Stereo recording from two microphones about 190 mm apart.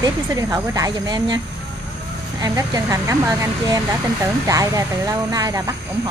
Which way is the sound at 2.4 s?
15° right (ahead or behind).